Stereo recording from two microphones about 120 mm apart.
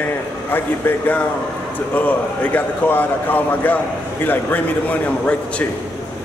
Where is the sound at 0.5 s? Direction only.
15° left (ahead or behind).